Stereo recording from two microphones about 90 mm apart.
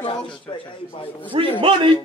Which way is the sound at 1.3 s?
70° right (ahead or behind).